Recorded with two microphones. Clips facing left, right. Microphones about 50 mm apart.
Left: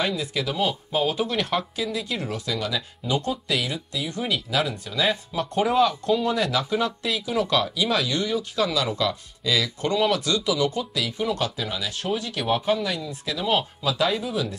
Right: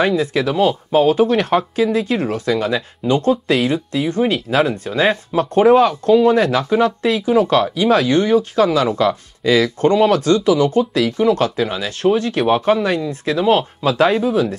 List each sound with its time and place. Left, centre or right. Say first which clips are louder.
0.0 s speech: right 10 dB; right